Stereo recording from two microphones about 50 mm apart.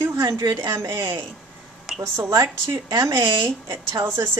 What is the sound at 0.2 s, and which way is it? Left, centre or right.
Speech, right.